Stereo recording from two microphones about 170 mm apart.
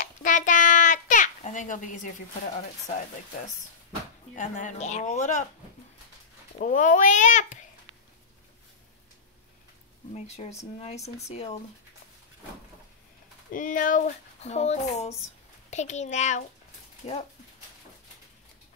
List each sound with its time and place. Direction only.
0.0 s babbling: 50° left (ahead or behind)
4.4 s speech: 50° left (ahead or behind)
6.6 s speech: 50° left (ahead or behind)
10.1 s speech: 40° left (ahead or behind)
13.5 s speech: 50° left (ahead or behind)